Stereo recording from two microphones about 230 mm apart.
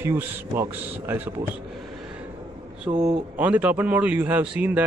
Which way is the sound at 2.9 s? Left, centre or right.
Right.